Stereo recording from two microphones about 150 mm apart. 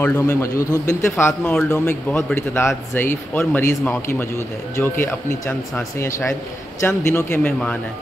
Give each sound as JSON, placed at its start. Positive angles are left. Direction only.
{"t": 0.0, "sound": "a man's voice", "side_deg": 20}
{"t": 1.4, "sound": "speech", "side_deg": 5}
{"t": 1.7, "sound": "a man's voice", "side_deg": 15}